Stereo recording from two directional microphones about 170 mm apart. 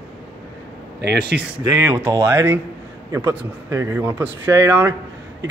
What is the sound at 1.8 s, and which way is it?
Speech, 15° right (ahead or behind).